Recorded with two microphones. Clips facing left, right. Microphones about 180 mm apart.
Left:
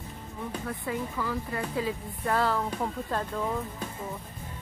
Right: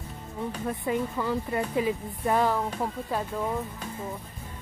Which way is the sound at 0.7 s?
25° right (ahead or behind).